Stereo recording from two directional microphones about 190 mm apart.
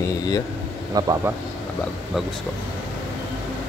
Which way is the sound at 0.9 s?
20° right (ahead or behind).